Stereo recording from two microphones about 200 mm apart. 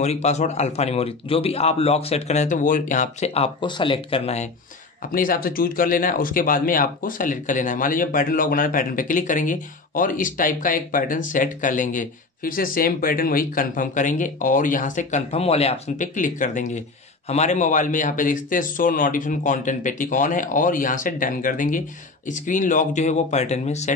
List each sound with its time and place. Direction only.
0.0 s speech: 35° left (ahead or behind)
5.1 s speech: 45° left (ahead or behind)